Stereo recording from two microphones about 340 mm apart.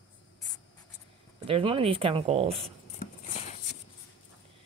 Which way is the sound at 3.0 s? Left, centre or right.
Centre.